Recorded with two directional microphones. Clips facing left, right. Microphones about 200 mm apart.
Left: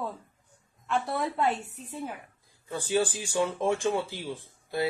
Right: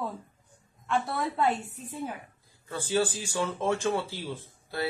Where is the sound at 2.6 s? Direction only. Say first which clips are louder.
Left 1 dB; 15° left (ahead or behind).